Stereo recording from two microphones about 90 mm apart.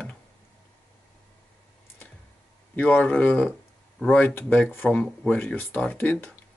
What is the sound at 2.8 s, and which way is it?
Speech, 15° left (ahead or behind).